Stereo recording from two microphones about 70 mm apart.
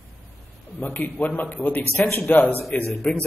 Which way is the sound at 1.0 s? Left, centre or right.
Left.